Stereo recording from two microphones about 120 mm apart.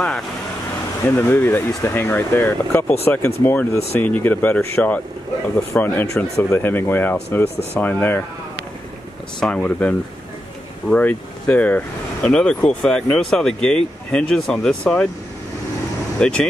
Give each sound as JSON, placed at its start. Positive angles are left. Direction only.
{"t": 1.0, "sound": "speech", "side_deg": 20}
{"t": 9.4, "sound": "speech", "side_deg": 10}
{"t": 16.2, "sound": "speech", "side_deg": 10}